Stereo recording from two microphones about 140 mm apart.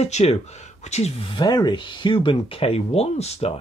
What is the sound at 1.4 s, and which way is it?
Speech, 30° left (ahead or behind).